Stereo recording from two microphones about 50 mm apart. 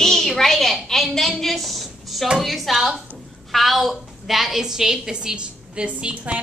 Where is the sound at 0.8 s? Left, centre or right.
Centre.